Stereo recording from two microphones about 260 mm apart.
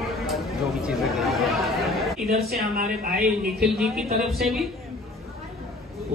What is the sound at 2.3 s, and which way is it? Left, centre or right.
A woman's voice, right.